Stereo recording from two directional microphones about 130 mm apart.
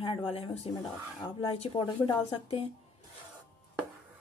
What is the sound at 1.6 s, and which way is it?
Speech, 40° left (ahead or behind).